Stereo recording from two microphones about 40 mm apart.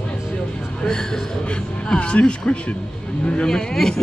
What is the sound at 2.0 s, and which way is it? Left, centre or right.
Speech, left.